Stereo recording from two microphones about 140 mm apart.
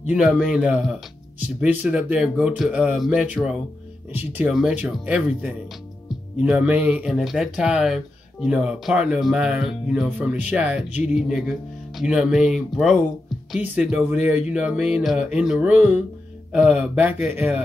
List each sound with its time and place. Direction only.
0.1 s speech: 5° right (ahead or behind)